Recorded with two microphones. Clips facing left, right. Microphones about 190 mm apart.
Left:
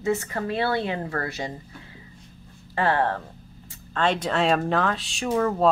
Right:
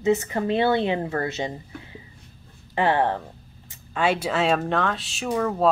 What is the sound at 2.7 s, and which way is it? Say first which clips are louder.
Speech: right 2 dB; 15° right (ahead or behind).